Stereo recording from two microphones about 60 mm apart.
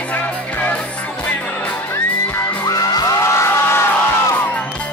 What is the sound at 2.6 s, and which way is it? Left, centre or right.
Music, left.